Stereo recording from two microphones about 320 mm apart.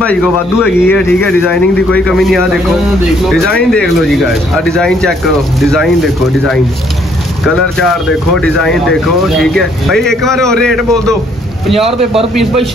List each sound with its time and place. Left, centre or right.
0.0 s speech: centre
11.7 s a man's voice: centre